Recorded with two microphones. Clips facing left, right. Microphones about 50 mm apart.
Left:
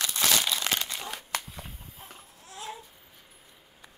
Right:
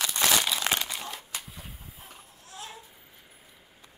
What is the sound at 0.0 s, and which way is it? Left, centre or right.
Crumpling, centre.